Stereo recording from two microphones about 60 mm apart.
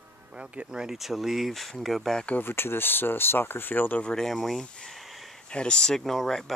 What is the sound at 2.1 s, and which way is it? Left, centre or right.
Speech, left.